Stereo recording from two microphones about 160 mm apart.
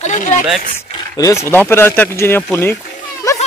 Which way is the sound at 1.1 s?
20° left (ahead or behind).